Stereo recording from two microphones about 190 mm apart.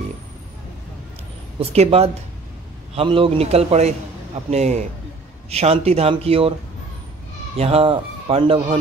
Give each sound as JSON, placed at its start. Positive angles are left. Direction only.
{"t": 1.6, "sound": "a man's voice", "side_deg": -30}
{"t": 7.5, "sound": "speech", "side_deg": -30}